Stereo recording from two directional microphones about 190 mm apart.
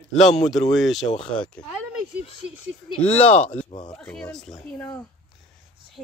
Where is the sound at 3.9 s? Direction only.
5° left (ahead or behind).